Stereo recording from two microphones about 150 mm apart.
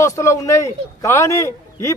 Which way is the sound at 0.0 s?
20° left (ahead or behind).